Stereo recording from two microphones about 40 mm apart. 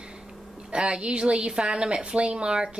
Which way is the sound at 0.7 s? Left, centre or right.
Right.